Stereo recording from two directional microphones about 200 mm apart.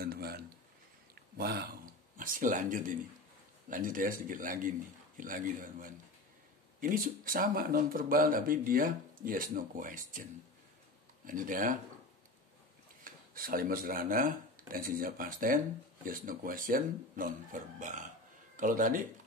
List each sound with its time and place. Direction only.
0.0 s a sound: 50° right (ahead or behind)
1.4 s speech: 50° right (ahead or behind)
11.2 s speech: 40° right (ahead or behind)
13.0 s speech: 45° right (ahead or behind)